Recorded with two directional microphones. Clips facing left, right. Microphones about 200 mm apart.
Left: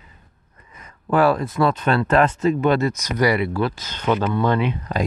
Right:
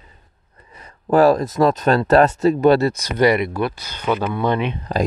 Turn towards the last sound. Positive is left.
turn(degrees=-20)  # may be behind; listen again after turning